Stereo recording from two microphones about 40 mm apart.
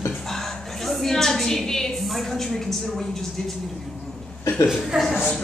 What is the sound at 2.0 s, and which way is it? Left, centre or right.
A woman's voice, centre.